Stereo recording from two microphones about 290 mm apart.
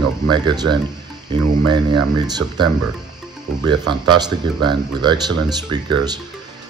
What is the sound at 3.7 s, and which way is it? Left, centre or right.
Speech, centre.